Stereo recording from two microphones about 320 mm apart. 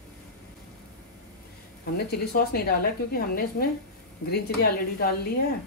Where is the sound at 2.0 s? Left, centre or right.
Left.